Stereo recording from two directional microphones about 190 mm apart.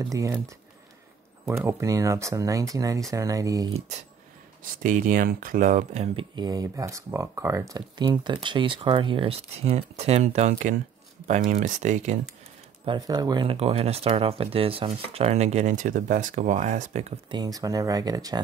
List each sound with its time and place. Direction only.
0.0 s speech: 15° right (ahead or behind)
1.4 s speech: 15° right (ahead or behind)
4.8 s speech: 45° right (ahead or behind)
6.1 s speech: 20° right (ahead or behind); by 12.2 s 40° right (ahead or behind)
12.8 s speech: 25° right (ahead or behind)
17.3 s speech: 20° right (ahead or behind)